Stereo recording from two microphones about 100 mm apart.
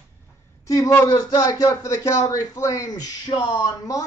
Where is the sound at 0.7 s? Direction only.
30° left (ahead or behind).